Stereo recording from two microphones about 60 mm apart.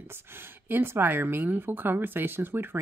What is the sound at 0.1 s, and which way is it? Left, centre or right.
Speech, right.